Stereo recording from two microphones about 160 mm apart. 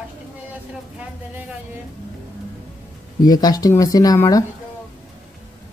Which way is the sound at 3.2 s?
25° left (ahead or behind).